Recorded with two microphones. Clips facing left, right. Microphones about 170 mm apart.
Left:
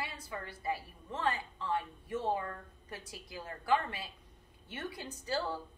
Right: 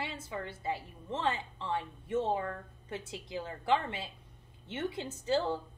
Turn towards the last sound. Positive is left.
turn(degrees=-25)  # may be behind; listen again after turning